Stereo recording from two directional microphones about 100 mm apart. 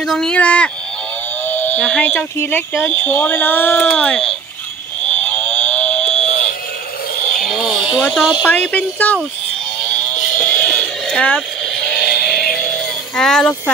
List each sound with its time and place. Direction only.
0.0 s speech: 5° left (ahead or behind)
5.0 s cattle: 15° left (ahead or behind)
7.3 s a sound: centre (ahead or behind)
8.1 s speech: 5° right (ahead or behind)
8.5 s speech: 15° left (ahead or behind)
9.8 s a sound: 10° left (ahead or behind)